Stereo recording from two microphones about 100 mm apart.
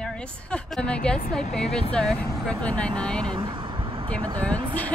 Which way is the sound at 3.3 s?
55° right (ahead or behind).